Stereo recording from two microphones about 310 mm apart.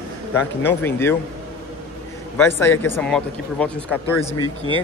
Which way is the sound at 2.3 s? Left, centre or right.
Centre.